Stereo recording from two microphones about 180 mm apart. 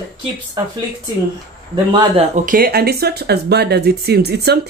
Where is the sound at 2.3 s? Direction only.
50° right (ahead or behind).